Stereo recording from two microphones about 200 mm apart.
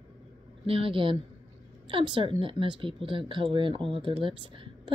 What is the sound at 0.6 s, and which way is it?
A woman's voice, 25° right (ahead or behind).